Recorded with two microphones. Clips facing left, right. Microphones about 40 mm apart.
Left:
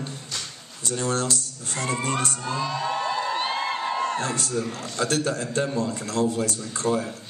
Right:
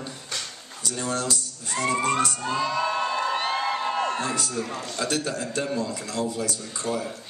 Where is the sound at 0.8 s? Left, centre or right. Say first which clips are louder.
Left 2 dB; left.